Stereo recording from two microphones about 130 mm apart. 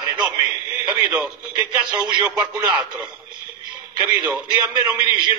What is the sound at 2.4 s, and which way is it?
Speech, 25° right (ahead or behind).